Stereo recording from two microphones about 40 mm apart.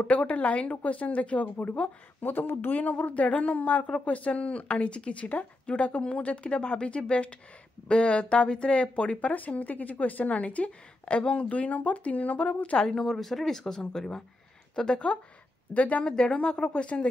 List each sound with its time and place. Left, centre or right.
0.0 s speech: left
2.2 s speech: left
12.9 s speech: centre
15.7 s speech: left
16.0 s speech: left